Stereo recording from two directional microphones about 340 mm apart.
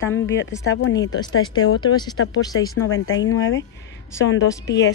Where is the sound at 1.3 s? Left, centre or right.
Left.